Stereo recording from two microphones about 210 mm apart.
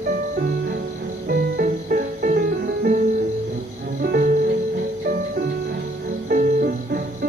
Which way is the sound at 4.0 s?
45° right (ahead or behind).